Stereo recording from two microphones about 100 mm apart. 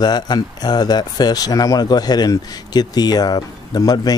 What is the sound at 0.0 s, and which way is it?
Speech, 45° left (ahead or behind).